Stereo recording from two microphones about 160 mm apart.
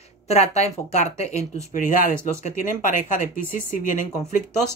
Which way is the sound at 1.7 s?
55° left (ahead or behind).